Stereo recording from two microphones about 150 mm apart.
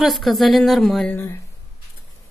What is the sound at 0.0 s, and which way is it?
Speech, centre (ahead or behind).